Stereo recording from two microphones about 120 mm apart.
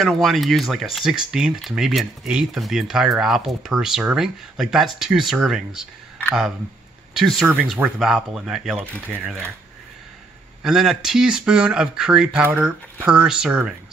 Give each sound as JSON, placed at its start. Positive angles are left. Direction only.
{"t": 0.0, "sound": "speech", "side_deg": 0}
{"t": 7.2, "sound": "speech", "side_deg": 0}
{"t": 10.6, "sound": "speech", "side_deg": -5}